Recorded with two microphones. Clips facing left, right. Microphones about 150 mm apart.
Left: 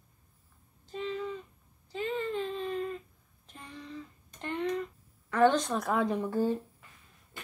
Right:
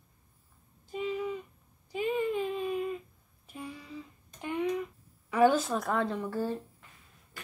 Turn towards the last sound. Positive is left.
turn(degrees=15)  # may be behind; listen again after turning